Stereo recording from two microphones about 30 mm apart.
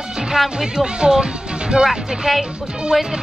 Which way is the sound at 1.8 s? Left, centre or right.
Centre.